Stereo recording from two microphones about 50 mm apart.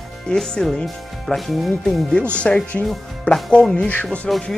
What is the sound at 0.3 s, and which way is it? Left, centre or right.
Speech, centre.